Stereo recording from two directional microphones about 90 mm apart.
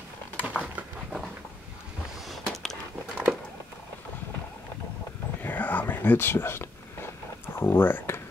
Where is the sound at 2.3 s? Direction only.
5° left (ahead or behind).